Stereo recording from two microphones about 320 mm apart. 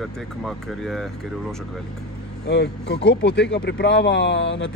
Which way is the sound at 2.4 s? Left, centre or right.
Left.